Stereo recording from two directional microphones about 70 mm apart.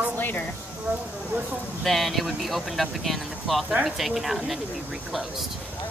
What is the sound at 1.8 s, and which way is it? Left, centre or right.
Speech, centre.